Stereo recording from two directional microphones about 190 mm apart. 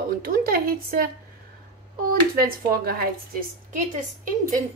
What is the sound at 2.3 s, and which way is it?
Speech, 50° right (ahead or behind).